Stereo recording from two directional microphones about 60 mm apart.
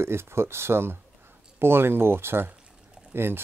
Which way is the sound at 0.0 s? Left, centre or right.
Right.